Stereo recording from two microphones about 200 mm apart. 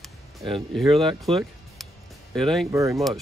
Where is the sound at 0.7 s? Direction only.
Centre (ahead or behind).